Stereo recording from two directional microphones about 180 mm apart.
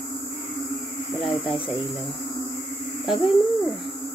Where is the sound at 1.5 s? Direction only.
30° left (ahead or behind).